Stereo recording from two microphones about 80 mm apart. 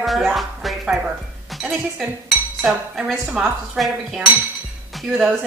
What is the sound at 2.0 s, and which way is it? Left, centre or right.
A woman's voice, centre.